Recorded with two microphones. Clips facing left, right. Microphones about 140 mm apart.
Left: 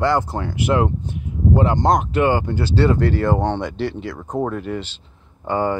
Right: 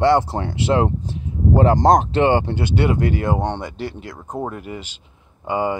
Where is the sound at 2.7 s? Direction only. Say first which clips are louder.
Left 2 dB; 15° right (ahead or behind).